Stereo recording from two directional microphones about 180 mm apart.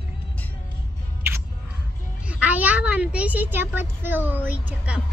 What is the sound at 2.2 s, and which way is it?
A woman's voice, 5° right (ahead or behind).